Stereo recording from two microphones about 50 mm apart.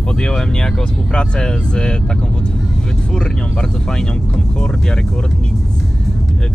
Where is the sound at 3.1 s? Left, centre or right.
Centre.